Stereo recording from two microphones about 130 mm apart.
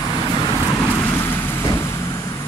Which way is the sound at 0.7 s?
10° left (ahead or behind).